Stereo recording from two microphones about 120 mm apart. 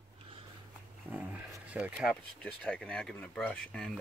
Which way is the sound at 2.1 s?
5° left (ahead or behind).